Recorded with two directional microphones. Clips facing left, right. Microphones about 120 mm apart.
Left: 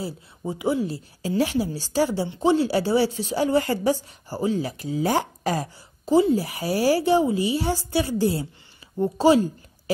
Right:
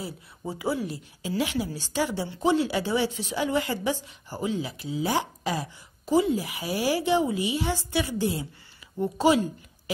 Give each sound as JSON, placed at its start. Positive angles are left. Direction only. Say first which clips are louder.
{"t": 0.4, "sound": "speech", "louder": "left 5 dB", "side_deg": 20}
{"t": 6.0, "sound": "speech", "louder": "left 4 dB", "side_deg": 35}